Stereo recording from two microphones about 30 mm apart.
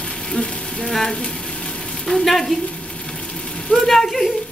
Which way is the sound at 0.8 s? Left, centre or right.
Centre.